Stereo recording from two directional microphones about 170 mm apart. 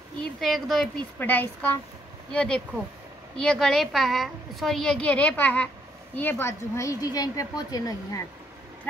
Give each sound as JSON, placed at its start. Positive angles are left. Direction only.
{"t": 0.2, "sound": "a woman's voice", "side_deg": 0}